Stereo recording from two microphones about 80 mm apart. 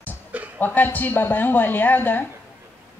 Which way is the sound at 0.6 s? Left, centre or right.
Left.